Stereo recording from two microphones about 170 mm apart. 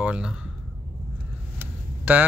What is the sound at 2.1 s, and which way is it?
Speech, 15° right (ahead or behind).